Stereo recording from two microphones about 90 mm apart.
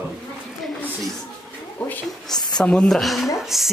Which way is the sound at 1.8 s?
15° left (ahead or behind).